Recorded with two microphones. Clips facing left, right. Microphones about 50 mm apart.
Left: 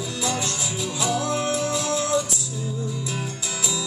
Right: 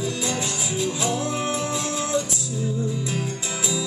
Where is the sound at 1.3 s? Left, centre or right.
Centre.